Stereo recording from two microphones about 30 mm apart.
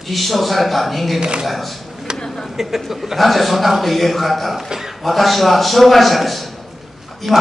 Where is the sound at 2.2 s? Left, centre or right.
Centre.